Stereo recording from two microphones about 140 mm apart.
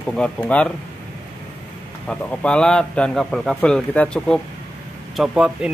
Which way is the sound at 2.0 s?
5° left (ahead or behind).